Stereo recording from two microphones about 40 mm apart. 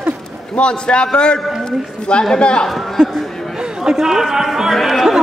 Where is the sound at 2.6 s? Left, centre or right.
Centre.